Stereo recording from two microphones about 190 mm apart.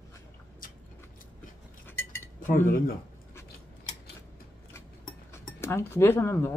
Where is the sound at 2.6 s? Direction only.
50° left (ahead or behind).